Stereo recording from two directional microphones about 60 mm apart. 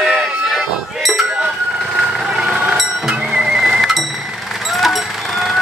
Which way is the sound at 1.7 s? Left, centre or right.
Centre.